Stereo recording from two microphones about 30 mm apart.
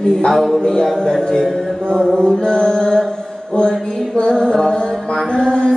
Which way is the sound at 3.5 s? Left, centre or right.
Left.